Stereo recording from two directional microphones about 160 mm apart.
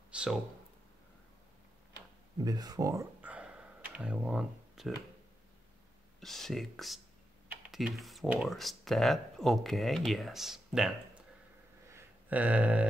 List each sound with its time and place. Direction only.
0.1 s speech: 5° right (ahead or behind)
2.3 s computer keyboard: 25° right (ahead or behind); by 4.9 s 5° right (ahead or behind)
6.2 s speech: centre (ahead or behind)
11.9 s a sound: 10° right (ahead or behind)